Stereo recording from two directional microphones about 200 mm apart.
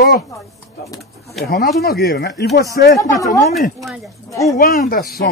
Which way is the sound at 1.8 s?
50° left (ahead or behind).